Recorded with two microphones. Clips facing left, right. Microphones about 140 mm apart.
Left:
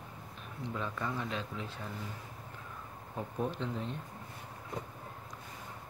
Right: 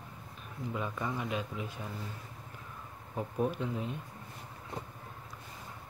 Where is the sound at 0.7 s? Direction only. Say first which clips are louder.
Right 1 dB; 10° right (ahead or behind).